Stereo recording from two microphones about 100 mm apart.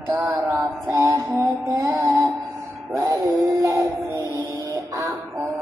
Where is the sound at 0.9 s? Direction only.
30° right (ahead or behind).